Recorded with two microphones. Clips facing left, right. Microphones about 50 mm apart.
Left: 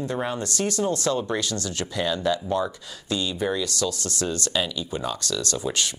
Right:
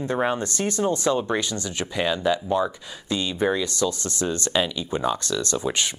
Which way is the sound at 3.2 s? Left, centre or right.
Right.